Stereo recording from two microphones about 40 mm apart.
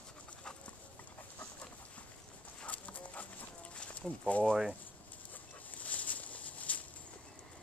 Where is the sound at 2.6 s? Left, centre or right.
Left.